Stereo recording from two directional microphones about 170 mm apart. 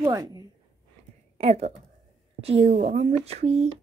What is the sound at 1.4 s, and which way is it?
Speech, 35° right (ahead or behind).